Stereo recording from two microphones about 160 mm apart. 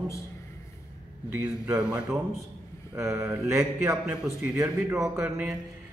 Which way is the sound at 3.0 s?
15° right (ahead or behind).